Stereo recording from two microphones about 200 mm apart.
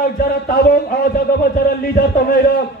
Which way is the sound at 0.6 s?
50° left (ahead or behind).